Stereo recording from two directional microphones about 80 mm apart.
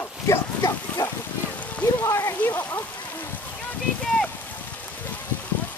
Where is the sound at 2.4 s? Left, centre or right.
Left.